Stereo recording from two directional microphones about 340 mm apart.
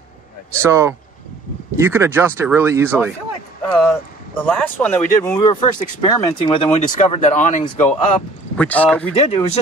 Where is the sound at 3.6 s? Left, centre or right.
Centre.